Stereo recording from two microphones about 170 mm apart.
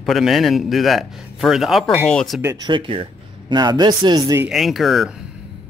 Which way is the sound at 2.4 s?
20° right (ahead or behind).